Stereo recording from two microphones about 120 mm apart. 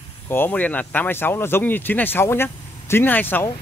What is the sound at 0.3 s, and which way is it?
Speech, 15° left (ahead or behind).